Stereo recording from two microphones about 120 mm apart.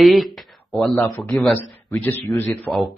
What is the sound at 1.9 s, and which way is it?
Speech, 15° left (ahead or behind).